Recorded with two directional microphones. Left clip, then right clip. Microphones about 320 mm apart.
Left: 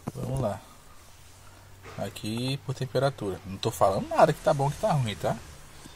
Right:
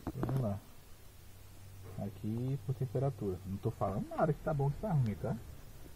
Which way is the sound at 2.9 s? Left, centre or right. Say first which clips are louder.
Left 11 dB; centre.